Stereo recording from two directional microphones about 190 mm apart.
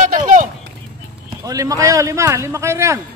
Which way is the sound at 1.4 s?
20° right (ahead or behind).